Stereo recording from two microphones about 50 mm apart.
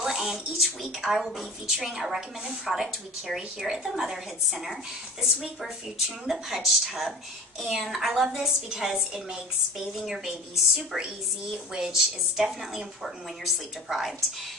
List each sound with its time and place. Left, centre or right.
0.0 s a woman's voice: centre
3.3 s a woman's voice: centre
6.0 s a woman's voice: centre